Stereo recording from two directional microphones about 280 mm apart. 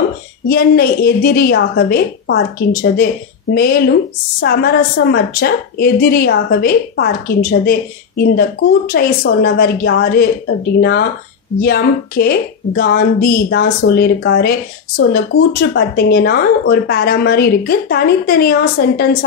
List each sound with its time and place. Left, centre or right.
0.5 s a woman's voice: left
8.2 s a woman's voice: left